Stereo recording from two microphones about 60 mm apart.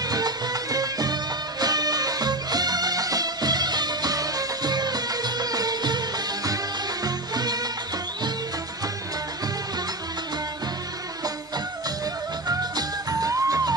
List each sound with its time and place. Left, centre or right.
0.0 s music: right
13.1 s music: right